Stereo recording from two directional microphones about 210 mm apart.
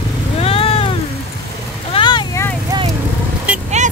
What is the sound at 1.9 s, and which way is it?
Vehicle, 20° left (ahead or behind).